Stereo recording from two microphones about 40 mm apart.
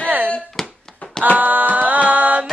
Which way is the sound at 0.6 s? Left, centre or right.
Centre.